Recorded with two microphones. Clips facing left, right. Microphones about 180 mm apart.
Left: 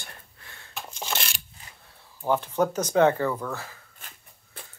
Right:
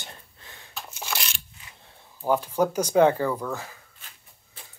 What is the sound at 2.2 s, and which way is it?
Speech, 10° right (ahead or behind).